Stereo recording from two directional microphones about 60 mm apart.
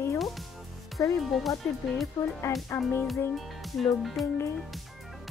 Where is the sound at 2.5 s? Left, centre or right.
Left.